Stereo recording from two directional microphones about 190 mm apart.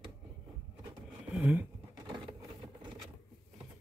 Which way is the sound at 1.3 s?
10° right (ahead or behind).